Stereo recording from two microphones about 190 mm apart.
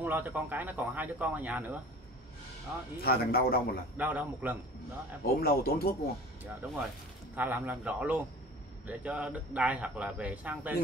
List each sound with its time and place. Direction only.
0.0 s a man's voice: 10° right (ahead or behind)
3.0 s a man's voice: 55° left (ahead or behind)
3.9 s a man's voice: 10° right (ahead or behind)
5.4 s a man's voice: 55° left (ahead or behind)
6.4 s a man's voice: centre (ahead or behind)